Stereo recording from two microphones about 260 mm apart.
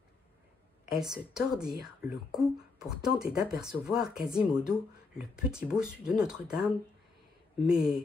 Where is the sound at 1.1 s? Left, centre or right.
Centre.